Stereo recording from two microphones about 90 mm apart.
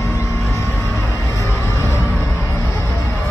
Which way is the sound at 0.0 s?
35° left (ahead or behind).